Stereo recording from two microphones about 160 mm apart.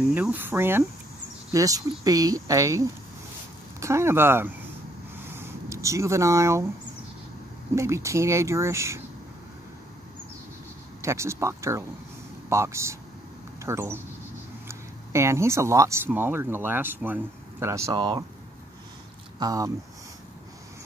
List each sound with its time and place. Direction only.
0.1 s speech: 10° right (ahead or behind)
5.2 s a sound: 15° right (ahead or behind)
7.7 s speech: 20° right (ahead or behind)
11.0 s speech: 15° right (ahead or behind)
19.4 s speech: 20° right (ahead or behind)